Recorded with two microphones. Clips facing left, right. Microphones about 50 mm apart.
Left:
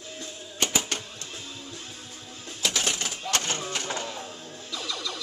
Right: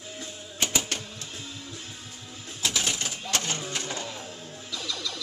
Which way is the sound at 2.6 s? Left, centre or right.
Left.